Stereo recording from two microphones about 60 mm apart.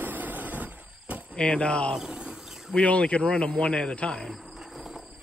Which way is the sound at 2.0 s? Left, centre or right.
Centre.